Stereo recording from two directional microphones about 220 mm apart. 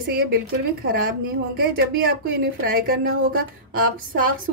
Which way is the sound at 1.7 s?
45° right (ahead or behind).